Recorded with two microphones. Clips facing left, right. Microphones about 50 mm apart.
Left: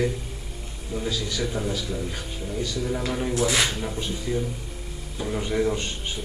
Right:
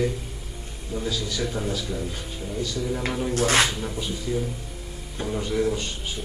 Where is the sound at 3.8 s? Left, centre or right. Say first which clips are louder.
Even; centre.